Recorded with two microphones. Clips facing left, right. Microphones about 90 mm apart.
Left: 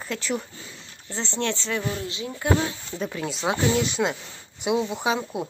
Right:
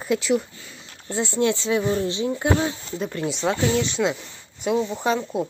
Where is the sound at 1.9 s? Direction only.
30° right (ahead or behind).